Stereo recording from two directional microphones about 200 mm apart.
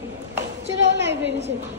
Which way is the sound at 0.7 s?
60° right (ahead or behind).